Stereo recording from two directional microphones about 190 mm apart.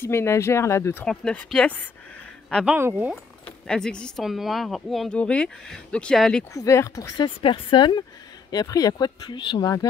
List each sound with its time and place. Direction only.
0.0 s speech: 15° left (ahead or behind)
1.0 s speech: 5° left (ahead or behind)
2.5 s speech: 5° right (ahead or behind)
3.4 s speech: 5° left (ahead or behind)
6.5 s speech: 15° left (ahead or behind)